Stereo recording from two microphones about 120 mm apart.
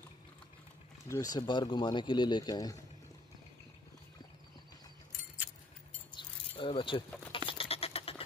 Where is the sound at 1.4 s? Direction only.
40° left (ahead or behind).